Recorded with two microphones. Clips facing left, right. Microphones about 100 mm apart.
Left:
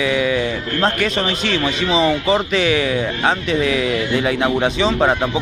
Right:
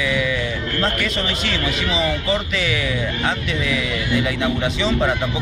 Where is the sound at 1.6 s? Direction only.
30° left (ahead or behind).